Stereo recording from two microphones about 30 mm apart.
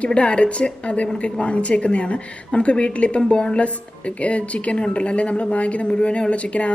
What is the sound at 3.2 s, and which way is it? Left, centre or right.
A woman's voice, left.